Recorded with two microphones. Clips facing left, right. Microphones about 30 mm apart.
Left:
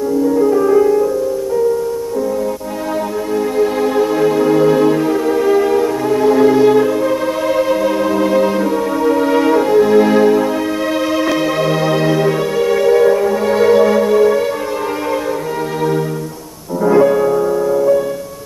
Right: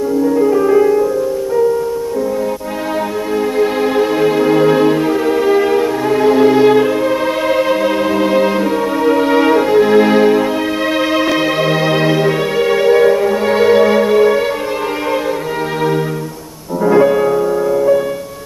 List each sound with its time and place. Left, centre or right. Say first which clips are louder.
0.2 s music: even; centre
3.5 s music: even; right
16.8 s music: even; centre